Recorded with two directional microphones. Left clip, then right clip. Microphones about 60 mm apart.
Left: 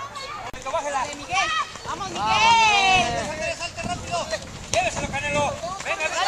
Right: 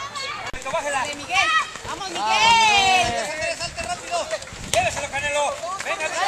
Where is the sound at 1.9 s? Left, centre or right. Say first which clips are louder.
Right 1 dB; right.